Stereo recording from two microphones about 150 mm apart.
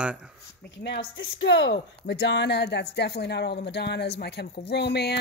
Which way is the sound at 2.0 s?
90° left.